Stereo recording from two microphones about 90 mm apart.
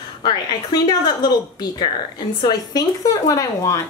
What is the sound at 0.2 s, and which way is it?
A woman's voice, 55° left (ahead or behind).